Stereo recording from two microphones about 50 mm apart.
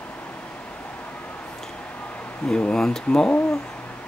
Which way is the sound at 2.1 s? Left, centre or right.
Left.